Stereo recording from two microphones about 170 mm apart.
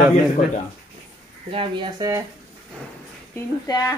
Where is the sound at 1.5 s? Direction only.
30° right (ahead or behind).